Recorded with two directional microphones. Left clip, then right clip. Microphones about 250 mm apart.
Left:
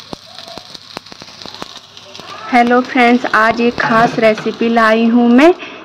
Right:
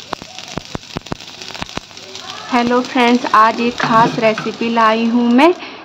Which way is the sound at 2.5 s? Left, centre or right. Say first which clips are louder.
Left 4 dB; centre.